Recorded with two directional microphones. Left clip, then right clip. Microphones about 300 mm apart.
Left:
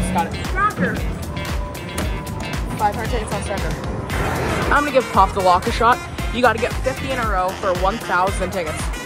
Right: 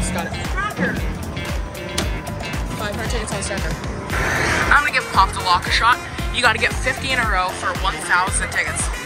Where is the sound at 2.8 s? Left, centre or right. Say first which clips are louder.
Left 9 dB; centre.